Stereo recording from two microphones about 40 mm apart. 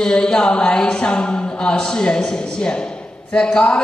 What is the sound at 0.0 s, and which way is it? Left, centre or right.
A man's voice, left.